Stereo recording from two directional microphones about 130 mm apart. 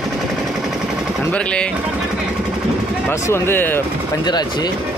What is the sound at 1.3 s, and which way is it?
Pigeon, 10° left (ahead or behind).